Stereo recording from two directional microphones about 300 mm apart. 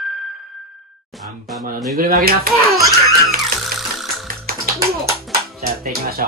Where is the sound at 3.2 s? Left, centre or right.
Centre.